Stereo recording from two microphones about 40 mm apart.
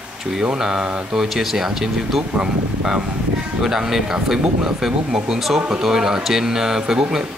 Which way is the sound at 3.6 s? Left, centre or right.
Centre.